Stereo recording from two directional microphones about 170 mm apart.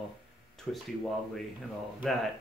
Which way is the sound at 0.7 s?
Centre (ahead or behind).